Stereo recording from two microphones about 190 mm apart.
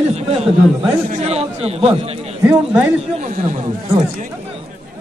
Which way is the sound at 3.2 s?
40° right (ahead or behind).